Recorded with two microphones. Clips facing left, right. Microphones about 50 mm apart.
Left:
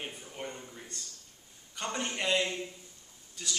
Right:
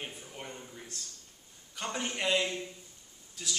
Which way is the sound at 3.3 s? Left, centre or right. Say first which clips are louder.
Even; centre.